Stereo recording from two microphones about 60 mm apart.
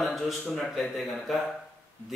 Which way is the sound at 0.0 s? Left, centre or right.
Centre.